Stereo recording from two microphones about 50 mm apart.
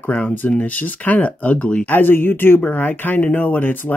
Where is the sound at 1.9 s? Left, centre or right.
Left.